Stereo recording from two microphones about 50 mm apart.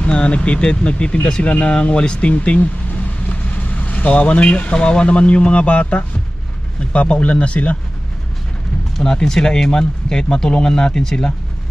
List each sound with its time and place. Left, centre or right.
0.0 s speech: left
8.9 s speech: centre